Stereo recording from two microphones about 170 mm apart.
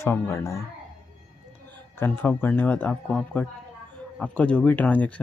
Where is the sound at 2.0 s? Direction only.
10° left (ahead or behind).